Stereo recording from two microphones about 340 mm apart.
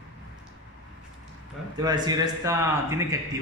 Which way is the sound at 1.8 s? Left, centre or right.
Centre.